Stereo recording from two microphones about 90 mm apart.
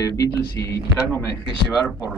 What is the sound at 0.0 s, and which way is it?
Speech, 40° left (ahead or behind).